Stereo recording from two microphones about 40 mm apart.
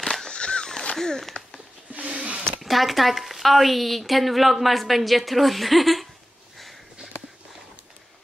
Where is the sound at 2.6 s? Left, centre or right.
Centre.